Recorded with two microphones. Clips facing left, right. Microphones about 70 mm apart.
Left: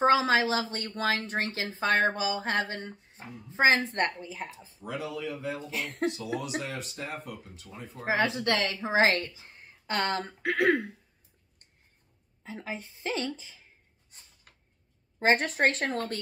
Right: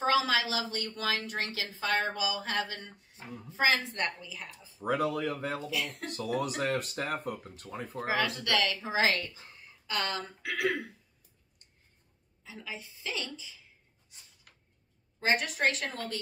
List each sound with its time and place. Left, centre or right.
0.0 s speech: left
4.7 s speech: right
5.7 s speech: left
6.1 s speech: right
8.5 s speech: left
12.4 s a woman's voice: left
15.1 s speech: left